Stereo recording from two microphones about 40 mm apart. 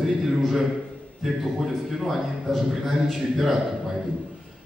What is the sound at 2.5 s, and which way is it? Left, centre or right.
A man's voice, centre.